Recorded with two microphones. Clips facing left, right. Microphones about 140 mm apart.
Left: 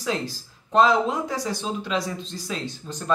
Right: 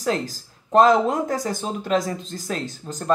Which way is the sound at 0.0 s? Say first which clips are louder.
Right 3 dB; 45° right (ahead or behind).